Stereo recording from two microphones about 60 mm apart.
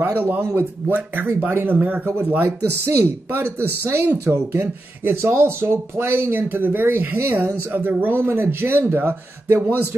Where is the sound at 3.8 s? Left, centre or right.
Right.